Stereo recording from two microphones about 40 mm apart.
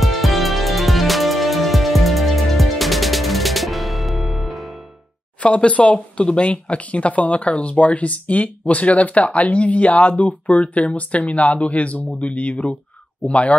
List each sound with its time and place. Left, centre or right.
0.0 s music: centre
5.4 s speech: left